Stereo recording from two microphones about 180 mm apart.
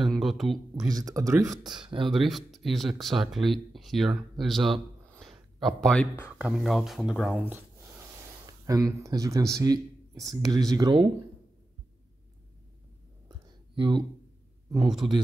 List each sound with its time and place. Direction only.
0.0 s a sound: centre (ahead or behind)
0.7 s speech: 20° right (ahead or behind)
2.0 s speech: centre (ahead or behind)
4.4 s a sound: centre (ahead or behind)
5.6 s speech: centre (ahead or behind)
6.2 s speech: 5° right (ahead or behind); by 11.1 s 25° right (ahead or behind)
13.7 s speech: 25° right (ahead or behind)